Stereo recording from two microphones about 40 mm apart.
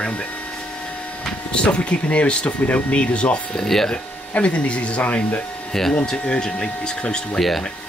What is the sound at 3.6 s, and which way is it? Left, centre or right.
Speech, centre.